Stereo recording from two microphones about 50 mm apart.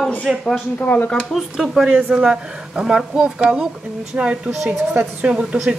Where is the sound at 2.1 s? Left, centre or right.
Centre.